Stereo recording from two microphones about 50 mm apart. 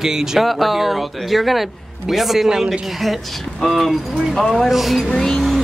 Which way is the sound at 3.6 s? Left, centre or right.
Centre.